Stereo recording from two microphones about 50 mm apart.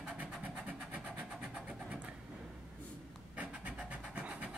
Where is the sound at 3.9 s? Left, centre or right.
Right.